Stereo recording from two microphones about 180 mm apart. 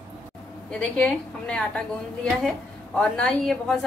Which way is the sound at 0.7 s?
5° left (ahead or behind).